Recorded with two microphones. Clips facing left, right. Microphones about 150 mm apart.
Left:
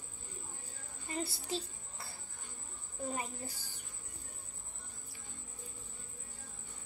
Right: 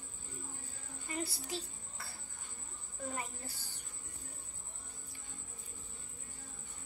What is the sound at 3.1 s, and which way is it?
Speech, 20° left (ahead or behind).